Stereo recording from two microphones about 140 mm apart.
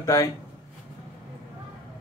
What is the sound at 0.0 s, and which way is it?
Speech, 25° left (ahead or behind).